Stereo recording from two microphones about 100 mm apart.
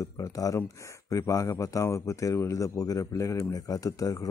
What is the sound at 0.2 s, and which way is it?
Speech, 35° left (ahead or behind).